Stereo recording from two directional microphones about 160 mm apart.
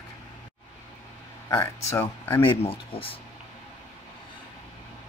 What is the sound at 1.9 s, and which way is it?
Speech, 15° left (ahead or behind).